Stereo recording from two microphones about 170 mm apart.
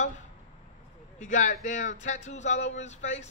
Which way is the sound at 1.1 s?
45° left (ahead or behind).